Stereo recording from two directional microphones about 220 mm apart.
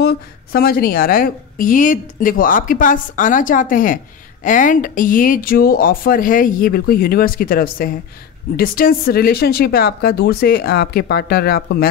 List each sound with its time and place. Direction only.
0.0 s a woman's voice: 45° left (ahead or behind)